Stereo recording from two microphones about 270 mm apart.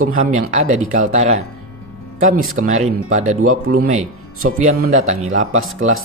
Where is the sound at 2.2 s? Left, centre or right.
Right.